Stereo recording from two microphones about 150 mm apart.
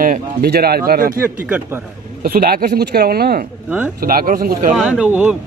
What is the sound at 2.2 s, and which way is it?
Speech, 85° right.